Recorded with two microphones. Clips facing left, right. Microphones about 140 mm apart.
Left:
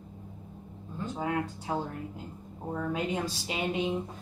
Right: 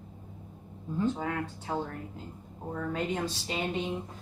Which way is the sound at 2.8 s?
10° left (ahead or behind).